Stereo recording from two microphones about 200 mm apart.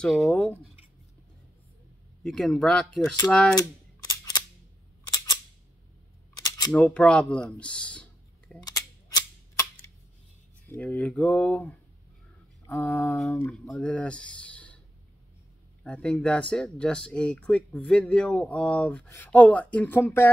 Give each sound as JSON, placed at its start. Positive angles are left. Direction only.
{"t": 0.0, "sound": "speech", "side_deg": 0}
{"t": 2.2, "sound": "speech", "side_deg": 0}
{"t": 3.5, "sound": "camera", "side_deg": 20}
{"t": 5.1, "sound": "cap gun", "side_deg": 15}
{"t": 6.3, "sound": "camera", "side_deg": 15}
{"t": 6.7, "sound": "speech", "side_deg": 5}
{"t": 8.6, "sound": "cap gun", "side_deg": 20}
{"t": 10.7, "sound": "speech", "side_deg": 5}
{"t": 15.8, "sound": "speech", "side_deg": 5}